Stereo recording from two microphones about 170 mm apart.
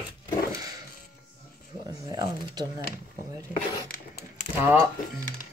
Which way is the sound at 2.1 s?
25° right (ahead or behind).